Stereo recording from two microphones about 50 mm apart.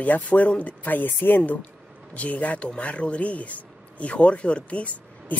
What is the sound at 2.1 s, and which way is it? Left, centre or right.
Speech, left.